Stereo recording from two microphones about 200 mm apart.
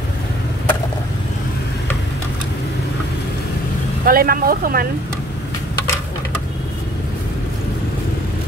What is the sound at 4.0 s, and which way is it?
Speech, 45° right (ahead or behind).